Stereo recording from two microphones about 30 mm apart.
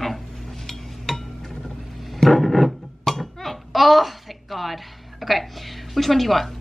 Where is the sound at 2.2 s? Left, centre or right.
Centre.